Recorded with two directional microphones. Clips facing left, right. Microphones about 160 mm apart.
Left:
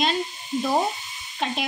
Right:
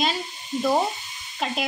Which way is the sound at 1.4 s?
5° right (ahead or behind).